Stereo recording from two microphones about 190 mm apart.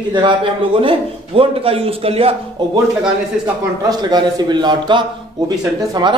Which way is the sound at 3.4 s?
20° right (ahead or behind).